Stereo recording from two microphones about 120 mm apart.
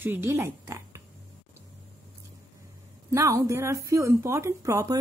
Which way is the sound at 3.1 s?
25° right (ahead or behind).